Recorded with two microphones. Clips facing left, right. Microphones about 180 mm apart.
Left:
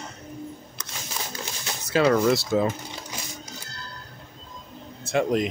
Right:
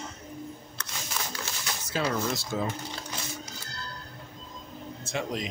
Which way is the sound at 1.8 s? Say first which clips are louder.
Left 10 dB; 70° left (ahead or behind).